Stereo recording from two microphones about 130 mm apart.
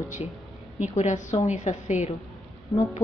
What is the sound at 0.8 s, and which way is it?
A woman's voice, 65° left (ahead or behind).